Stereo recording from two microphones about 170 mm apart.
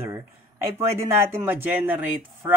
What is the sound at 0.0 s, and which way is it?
Speech, 15° right (ahead or behind).